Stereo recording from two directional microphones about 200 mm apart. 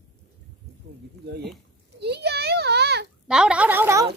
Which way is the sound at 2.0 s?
55° right (ahead or behind).